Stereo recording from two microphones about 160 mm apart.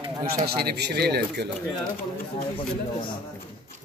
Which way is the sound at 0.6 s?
90° right.